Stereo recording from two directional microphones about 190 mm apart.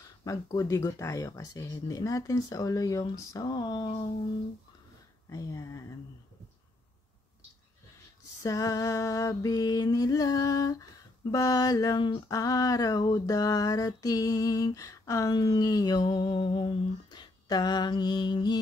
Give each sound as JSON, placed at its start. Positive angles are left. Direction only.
{"t": 0.2, "sound": "speech", "side_deg": 20}
{"t": 5.3, "sound": "speech", "side_deg": 15}
{"t": 8.4, "sound": "music", "side_deg": 20}